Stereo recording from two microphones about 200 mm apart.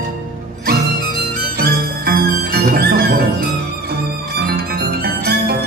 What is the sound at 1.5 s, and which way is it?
Music, 50° right (ahead or behind).